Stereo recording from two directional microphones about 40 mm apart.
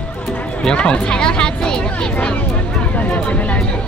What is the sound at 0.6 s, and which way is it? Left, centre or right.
Speech, left.